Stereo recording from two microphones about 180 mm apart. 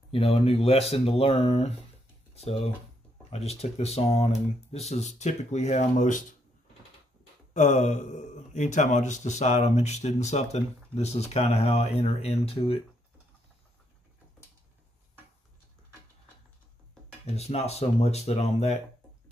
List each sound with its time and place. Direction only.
0.1 s speech: 35° left (ahead or behind)
7.5 s speech: 40° left (ahead or behind)
17.4 s speech: 35° left (ahead or behind)